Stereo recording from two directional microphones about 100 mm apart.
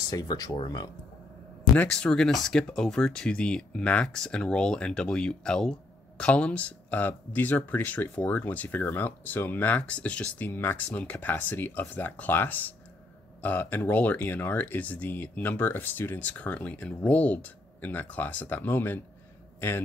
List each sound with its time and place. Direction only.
0.1 s speech: 40° left (ahead or behind)
1.8 s speech: 10° left (ahead or behind)